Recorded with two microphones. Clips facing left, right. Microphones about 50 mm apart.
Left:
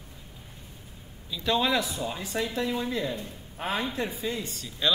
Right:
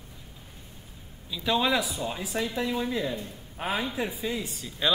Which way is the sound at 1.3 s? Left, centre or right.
Centre.